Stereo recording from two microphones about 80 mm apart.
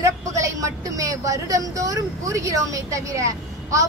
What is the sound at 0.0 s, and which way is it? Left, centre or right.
A woman's voice, right.